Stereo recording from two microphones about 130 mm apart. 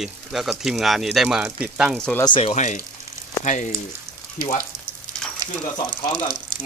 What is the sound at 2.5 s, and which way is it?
Speech, 65° left (ahead or behind).